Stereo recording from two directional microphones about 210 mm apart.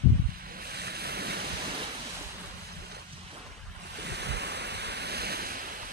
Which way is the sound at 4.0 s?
55° right (ahead or behind).